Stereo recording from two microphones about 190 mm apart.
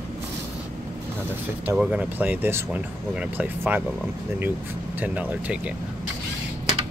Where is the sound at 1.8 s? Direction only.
5° right (ahead or behind).